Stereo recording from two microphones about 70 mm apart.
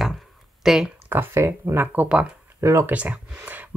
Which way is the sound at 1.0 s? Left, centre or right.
Right.